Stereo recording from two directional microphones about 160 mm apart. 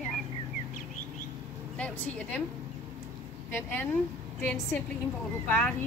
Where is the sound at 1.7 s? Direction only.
10° left (ahead or behind).